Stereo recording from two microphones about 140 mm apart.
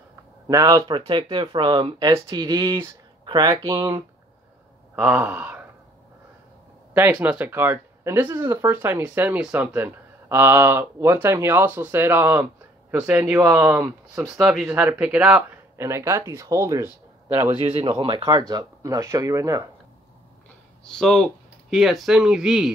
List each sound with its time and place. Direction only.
0.5 s speech: 25° right (ahead or behind)
4.9 s speech: 10° right (ahead or behind)
6.9 s speech: 15° right (ahead or behind)
15.9 s speech: 20° right (ahead or behind)
17.7 s speech: 35° right (ahead or behind)
20.8 s speech: 5° left (ahead or behind)